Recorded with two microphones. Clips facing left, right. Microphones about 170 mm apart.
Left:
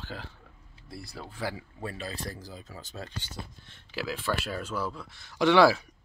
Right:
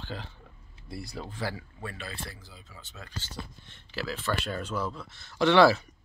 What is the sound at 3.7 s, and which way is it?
Speech, 10° left (ahead or behind).